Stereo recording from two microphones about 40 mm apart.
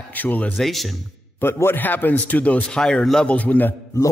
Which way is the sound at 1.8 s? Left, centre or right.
Left.